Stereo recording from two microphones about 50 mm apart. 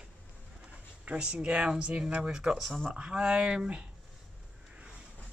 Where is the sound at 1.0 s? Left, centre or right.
Right.